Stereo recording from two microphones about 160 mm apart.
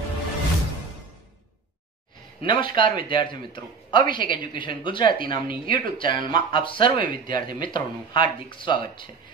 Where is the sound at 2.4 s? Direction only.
30° left (ahead or behind).